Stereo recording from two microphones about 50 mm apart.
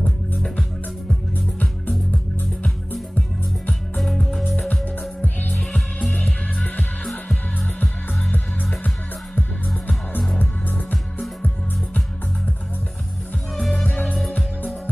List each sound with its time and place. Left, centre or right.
3.2 s music: left
4.0 s music: centre
8.8 s music: left
13.6 s music: centre
13.8 s music: left